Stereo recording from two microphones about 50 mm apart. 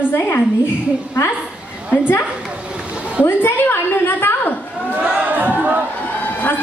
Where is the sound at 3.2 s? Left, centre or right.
Left.